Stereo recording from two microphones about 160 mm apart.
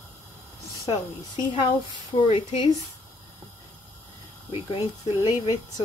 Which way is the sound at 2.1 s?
45° left (ahead or behind).